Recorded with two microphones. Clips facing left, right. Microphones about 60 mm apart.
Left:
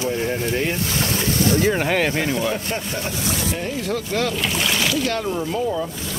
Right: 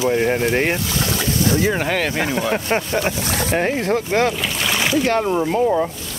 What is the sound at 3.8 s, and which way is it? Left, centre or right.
Speech, right.